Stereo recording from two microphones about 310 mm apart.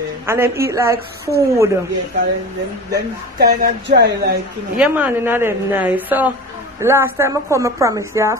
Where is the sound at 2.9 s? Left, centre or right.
Right.